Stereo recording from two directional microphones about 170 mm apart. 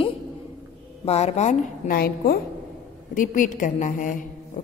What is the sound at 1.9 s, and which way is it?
Speech, 60° left (ahead or behind).